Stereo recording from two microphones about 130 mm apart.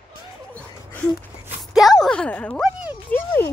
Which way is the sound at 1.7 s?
Centre (ahead or behind).